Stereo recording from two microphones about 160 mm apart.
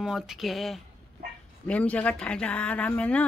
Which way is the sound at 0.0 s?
Centre (ahead or behind).